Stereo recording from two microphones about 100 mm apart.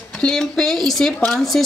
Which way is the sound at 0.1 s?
5° left (ahead or behind).